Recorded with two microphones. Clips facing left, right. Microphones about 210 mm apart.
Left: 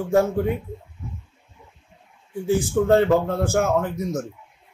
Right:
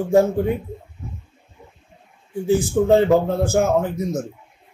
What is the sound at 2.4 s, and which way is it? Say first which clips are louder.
A man's voice: right 2 dB; 10° right (ahead or behind).